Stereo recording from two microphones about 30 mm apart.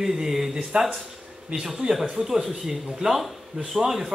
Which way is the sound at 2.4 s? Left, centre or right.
Centre.